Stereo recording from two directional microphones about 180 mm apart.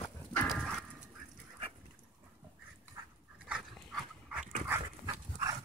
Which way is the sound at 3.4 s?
5° right (ahead or behind).